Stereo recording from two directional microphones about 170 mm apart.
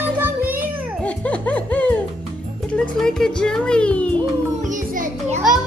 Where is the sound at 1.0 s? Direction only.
10° left (ahead or behind).